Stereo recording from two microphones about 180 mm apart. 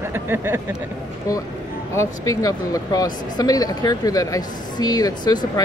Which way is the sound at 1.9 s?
15° left (ahead or behind).